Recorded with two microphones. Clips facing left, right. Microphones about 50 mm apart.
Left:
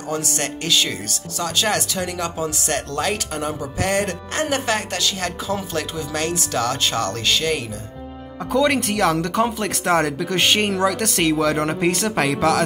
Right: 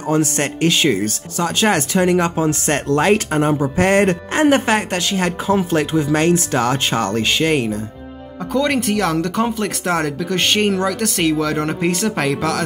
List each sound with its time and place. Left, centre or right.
0.1 s speech: right
8.5 s speech: centre